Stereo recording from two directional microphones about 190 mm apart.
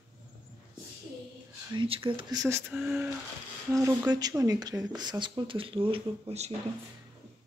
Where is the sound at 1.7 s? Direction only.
25° right (ahead or behind).